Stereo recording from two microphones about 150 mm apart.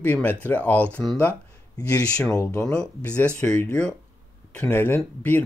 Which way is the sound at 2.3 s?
20° left (ahead or behind).